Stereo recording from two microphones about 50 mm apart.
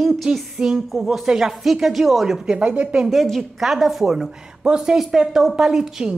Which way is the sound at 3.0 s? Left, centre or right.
Centre.